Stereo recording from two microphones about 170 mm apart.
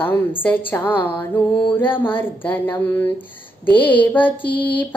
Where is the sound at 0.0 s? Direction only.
10° left (ahead or behind).